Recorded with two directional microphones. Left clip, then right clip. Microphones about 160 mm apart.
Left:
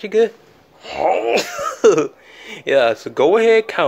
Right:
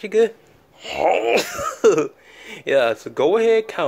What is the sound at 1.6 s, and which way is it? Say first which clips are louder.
Speech: left 6 dB; 5° left (ahead or behind).